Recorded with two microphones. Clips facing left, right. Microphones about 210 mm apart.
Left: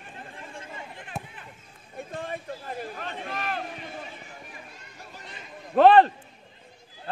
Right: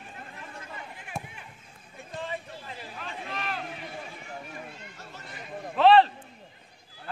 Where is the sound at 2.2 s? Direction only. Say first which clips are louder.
Right 1 dB; 50° left (ahead or behind).